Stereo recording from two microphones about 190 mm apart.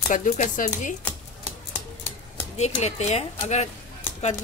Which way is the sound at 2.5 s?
35° left (ahead or behind).